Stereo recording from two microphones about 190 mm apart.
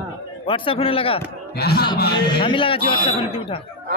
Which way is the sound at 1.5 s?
55° left (ahead or behind).